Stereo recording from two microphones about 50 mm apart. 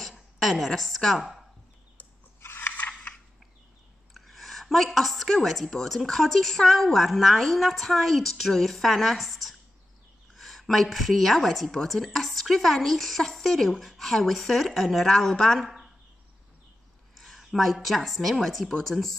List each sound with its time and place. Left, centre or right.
0.4 s a woman's voice: centre
2.4 s biting: left
2.9 s a sound: left
4.1 s a woman's voice: centre
17.1 s a woman's voice: centre